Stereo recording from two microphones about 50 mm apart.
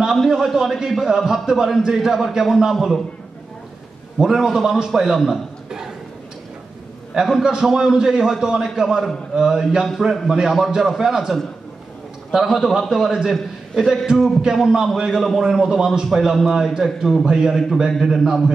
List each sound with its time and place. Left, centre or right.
0.3 s a man's voice: centre
4.2 s a man's voice: centre
7.2 s a man's voice: centre
14.4 s a man's voice: centre